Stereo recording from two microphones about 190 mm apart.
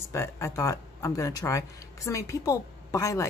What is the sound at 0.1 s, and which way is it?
A woman's voice, 15° left (ahead or behind).